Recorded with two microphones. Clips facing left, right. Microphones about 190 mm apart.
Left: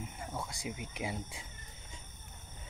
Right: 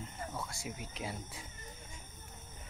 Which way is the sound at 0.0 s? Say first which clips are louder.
Left 1 dB; 15° left (ahead or behind).